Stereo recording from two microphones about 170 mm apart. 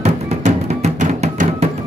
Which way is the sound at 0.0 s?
40° right (ahead or behind).